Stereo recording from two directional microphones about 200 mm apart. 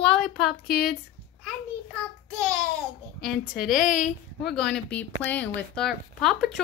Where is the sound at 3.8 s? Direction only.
40° left (ahead or behind).